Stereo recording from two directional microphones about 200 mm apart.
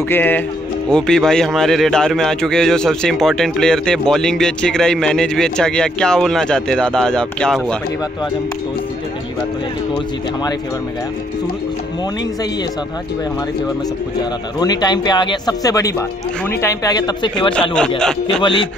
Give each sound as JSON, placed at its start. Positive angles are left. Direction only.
{"t": 0.1, "sound": "a man's voice", "side_deg": 10}
{"t": 14.6, "sound": "speech", "side_deg": 20}
{"t": 17.6, "sound": "a man's voice", "side_deg": 5}
{"t": 18.4, "sound": "speech", "side_deg": 25}